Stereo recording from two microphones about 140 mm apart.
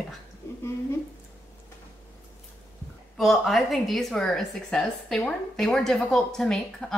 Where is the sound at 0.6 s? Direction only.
20° left (ahead or behind).